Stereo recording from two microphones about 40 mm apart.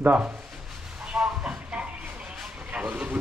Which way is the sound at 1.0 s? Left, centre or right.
Centre.